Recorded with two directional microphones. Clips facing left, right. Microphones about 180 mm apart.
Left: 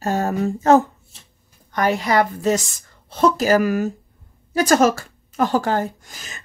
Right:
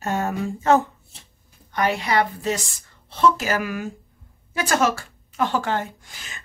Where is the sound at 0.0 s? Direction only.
35° left (ahead or behind).